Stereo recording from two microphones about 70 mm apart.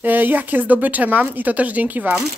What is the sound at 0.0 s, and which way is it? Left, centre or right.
Speech, right.